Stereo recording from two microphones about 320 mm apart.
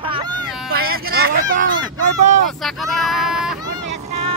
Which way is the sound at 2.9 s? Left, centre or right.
Centre.